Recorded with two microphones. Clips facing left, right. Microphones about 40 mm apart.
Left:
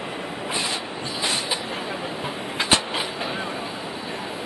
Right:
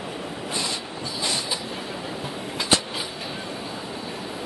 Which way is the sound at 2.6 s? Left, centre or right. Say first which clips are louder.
Left 2 dB; left.